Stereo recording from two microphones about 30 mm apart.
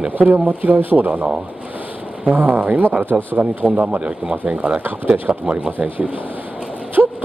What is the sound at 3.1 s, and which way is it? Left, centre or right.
Speech, right.